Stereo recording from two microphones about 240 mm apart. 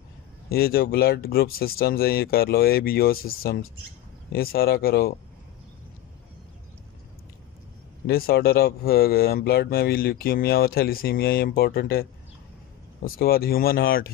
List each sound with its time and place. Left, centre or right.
0.5 s a man's voice: left
8.1 s a man's voice: left
13.2 s a man's voice: left